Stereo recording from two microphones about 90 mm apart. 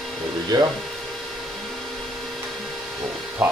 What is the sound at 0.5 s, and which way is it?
Speech, 55° right (ahead or behind).